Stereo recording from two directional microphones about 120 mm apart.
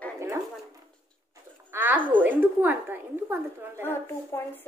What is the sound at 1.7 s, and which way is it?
A woman's voice, 15° right (ahead or behind).